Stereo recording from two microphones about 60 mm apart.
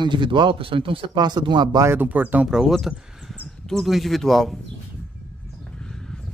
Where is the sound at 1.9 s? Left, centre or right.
Right.